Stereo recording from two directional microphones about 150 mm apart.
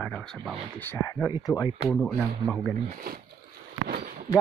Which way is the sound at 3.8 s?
85° right.